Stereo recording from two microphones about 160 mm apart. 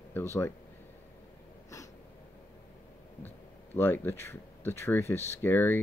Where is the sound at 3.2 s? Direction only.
10° left (ahead or behind).